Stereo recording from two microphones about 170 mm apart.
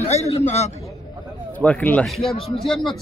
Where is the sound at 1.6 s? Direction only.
10° left (ahead or behind).